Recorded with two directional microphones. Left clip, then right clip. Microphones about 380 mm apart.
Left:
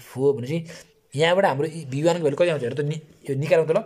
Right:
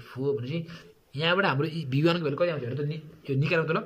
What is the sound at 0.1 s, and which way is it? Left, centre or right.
A man's voice, centre.